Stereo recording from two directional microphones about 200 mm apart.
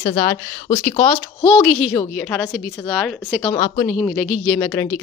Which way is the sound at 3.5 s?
25° left (ahead or behind).